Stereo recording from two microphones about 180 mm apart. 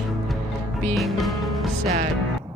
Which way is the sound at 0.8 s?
Centre (ahead or behind).